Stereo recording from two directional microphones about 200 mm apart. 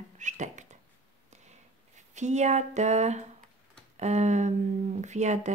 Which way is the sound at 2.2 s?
35° right (ahead or behind).